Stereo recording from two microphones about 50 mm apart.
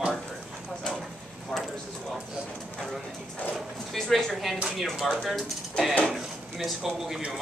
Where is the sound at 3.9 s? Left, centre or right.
Centre.